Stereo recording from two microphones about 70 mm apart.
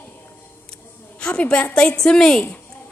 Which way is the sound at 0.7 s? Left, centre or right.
Centre.